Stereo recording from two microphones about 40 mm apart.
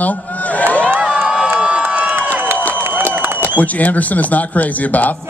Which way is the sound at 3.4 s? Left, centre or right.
Left.